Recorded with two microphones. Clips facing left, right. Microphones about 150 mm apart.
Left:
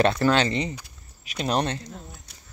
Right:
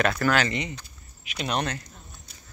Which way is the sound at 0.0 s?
25° left (ahead or behind).